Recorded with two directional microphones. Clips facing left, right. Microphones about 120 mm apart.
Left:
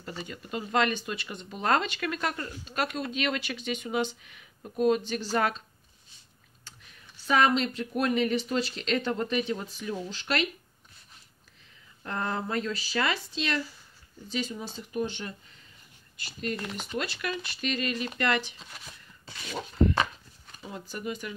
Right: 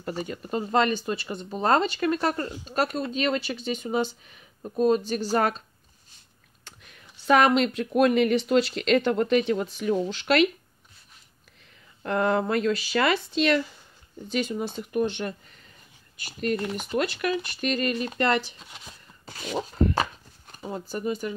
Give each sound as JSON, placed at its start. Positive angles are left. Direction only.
{"t": 0.0, "sound": "speech", "side_deg": -45}
{"t": 7.2, "sound": "speech", "side_deg": -60}
{"t": 12.0, "sound": "speech", "side_deg": -65}
{"t": 16.3, "sound": "speech", "side_deg": -45}
{"t": 19.2, "sound": "a sound", "side_deg": -40}
{"t": 20.9, "sound": "speech", "side_deg": -35}